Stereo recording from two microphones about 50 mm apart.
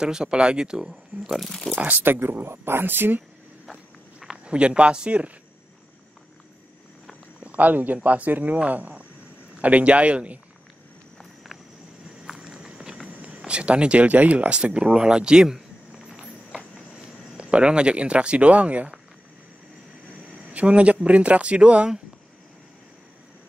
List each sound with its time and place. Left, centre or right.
0.0 s speech: centre
2.0 s speech: right
4.5 s speech: right
7.3 s speech: right
12.4 s walk: centre
13.5 s speech: right
16.1 s clip-clop: centre
17.4 s speech: right
20.5 s speech: right